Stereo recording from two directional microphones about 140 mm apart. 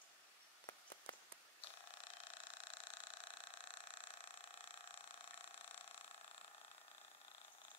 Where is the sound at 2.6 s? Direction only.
40° left (ahead or behind).